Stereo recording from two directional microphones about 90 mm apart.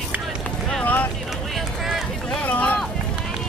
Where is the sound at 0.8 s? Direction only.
20° left (ahead or behind).